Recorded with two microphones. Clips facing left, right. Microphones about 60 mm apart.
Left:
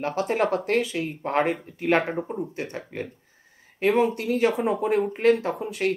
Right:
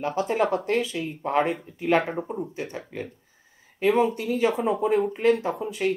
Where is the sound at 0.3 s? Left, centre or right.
Left.